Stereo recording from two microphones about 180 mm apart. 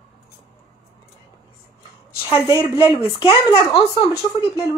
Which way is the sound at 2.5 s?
30° left (ahead or behind).